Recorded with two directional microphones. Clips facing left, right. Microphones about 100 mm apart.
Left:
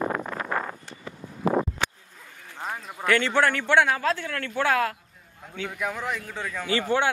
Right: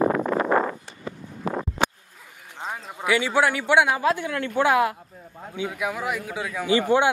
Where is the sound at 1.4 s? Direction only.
65° left (ahead or behind).